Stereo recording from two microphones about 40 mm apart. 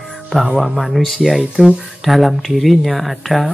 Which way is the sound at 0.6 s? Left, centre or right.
Right.